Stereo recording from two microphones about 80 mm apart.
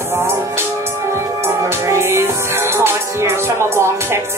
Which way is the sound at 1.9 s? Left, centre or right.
Right.